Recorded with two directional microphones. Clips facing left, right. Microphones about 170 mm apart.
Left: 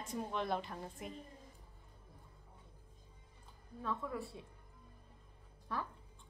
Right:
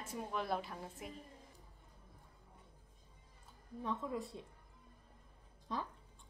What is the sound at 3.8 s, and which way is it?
Speech, 20° right (ahead or behind).